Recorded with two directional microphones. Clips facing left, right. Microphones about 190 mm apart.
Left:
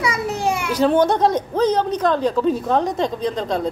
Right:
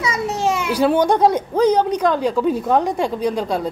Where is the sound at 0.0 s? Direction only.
25° right (ahead or behind).